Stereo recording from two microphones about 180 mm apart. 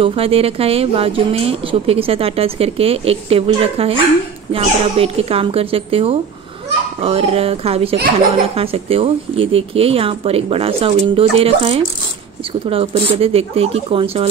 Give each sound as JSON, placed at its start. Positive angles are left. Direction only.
{"t": 0.0, "sound": "a child's voice", "side_deg": -30}